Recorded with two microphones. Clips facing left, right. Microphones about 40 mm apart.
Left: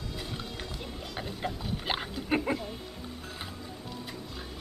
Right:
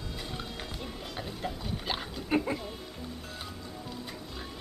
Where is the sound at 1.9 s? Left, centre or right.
Centre.